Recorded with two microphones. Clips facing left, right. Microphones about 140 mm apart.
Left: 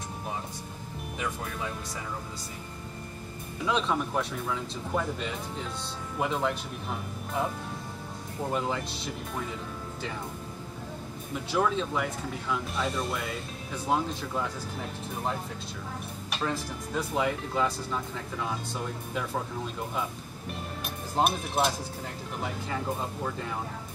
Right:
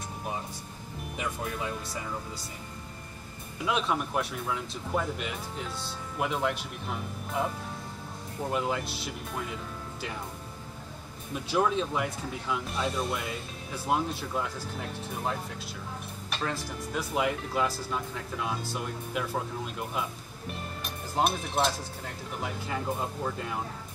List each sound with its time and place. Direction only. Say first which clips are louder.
3.6 s speech: left 1 dB; 10° right (ahead or behind)
11.5 s speech: even; 15° right (ahead or behind)
12.6 s speech: even; centre (ahead or behind)
16.6 s speech: left 1 dB; 10° right (ahead or behind)
21.2 s speech: left 1 dB; 5° left (ahead or behind)